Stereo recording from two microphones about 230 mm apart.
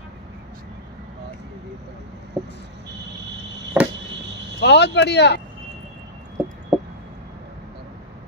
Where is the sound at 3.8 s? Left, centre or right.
Centre.